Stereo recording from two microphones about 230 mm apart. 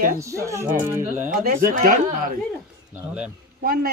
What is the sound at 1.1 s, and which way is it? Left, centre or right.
Speech, right.